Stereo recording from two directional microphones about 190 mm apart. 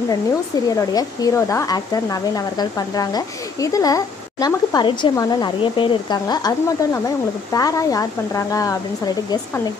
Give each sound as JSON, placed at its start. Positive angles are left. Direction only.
{"t": 0.7, "sound": "speech", "side_deg": 15}